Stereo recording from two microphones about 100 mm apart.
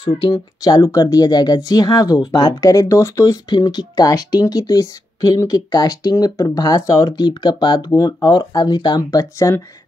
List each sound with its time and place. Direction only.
0.0 s speech: 60° left (ahead or behind)
0.7 s speech: 35° left (ahead or behind)